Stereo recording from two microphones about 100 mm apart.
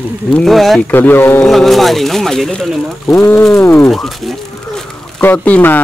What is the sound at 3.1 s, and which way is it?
Speech, 25° left (ahead or behind).